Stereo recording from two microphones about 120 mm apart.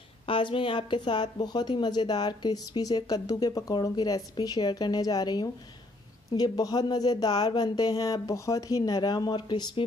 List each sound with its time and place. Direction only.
0.3 s a woman's voice: 45° left (ahead or behind)